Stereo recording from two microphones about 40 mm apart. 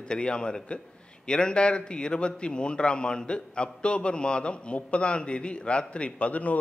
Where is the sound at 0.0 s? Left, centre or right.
Left.